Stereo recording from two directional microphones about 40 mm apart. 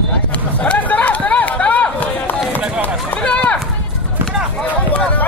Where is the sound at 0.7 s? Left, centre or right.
Left.